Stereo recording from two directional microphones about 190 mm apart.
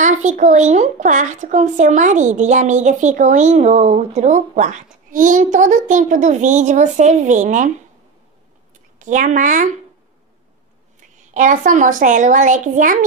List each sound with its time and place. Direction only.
0.0 s speech: 40° right (ahead or behind)
9.0 s a woman's voice: 40° right (ahead or behind)
11.3 s speech: 40° right (ahead or behind)